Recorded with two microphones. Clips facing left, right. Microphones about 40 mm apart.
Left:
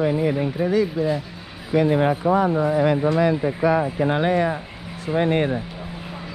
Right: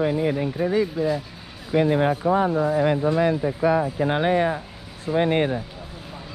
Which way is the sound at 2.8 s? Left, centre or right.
Left.